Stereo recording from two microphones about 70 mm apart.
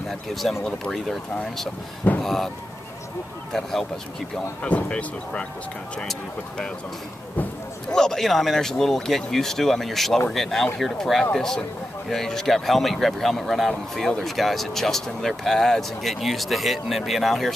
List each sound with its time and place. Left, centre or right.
0.3 s speech: centre
2.2 s speech: centre
4.6 s speech: centre
7.9 s speech: centre